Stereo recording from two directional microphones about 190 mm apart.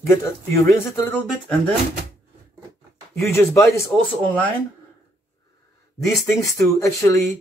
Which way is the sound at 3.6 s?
Centre (ahead or behind).